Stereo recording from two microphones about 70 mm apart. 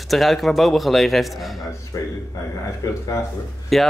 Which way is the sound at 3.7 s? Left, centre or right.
Centre.